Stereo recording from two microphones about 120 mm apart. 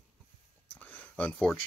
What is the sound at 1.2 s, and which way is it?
Speech, 5° left (ahead or behind).